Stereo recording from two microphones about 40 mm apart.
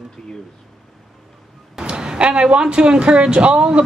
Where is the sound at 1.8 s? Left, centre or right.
Right.